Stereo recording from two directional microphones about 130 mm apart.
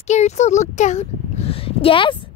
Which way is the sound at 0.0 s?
60° left (ahead or behind).